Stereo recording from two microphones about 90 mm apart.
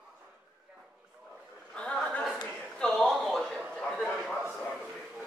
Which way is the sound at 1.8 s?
10° left (ahead or behind).